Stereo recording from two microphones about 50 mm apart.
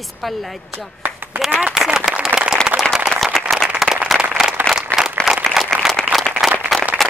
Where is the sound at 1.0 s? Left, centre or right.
Right.